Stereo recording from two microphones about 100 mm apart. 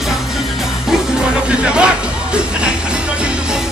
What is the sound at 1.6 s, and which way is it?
Music, 10° right (ahead or behind).